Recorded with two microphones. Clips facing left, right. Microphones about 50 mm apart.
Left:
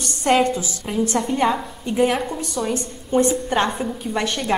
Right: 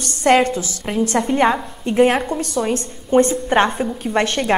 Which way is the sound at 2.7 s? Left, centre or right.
Right.